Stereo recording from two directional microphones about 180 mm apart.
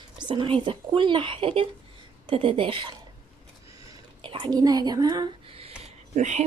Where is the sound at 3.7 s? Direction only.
25° right (ahead or behind); by 6.4 s 40° right (ahead or behind).